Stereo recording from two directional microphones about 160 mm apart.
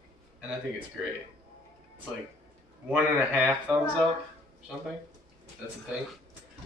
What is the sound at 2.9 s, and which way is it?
Speech, 10° right (ahead or behind).